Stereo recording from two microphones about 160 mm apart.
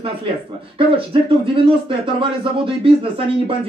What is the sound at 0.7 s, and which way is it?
Speech, 35° right (ahead or behind).